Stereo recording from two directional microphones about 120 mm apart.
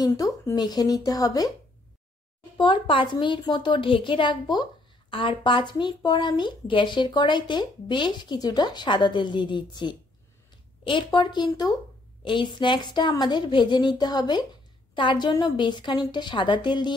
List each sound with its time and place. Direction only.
0.0 s speech: 30° left (ahead or behind)
2.5 s speech: 45° left (ahead or behind)